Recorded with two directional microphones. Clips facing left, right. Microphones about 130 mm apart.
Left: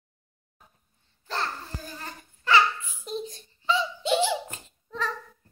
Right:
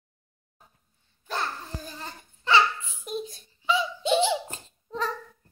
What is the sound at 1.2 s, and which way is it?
Babbling, 15° right (ahead or behind).